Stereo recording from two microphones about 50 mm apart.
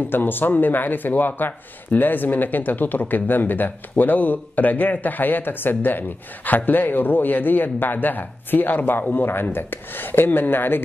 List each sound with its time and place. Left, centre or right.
0.1 s speech: left